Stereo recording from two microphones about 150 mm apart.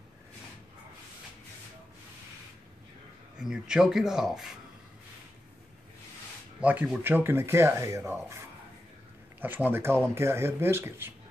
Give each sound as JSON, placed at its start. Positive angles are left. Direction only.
{"t": 3.3, "sound": "speech", "side_deg": -5}
{"t": 6.6, "sound": "speech", "side_deg": -10}